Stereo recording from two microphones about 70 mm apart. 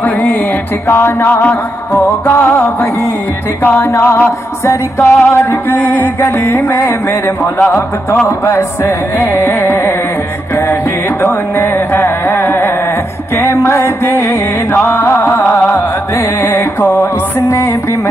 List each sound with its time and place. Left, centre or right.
0.0 s music: left
3.6 s music: left
3.9 s music: left
8.5 s music: left
11.2 s a sound: left
13.6 s music: left
17.5 s music: left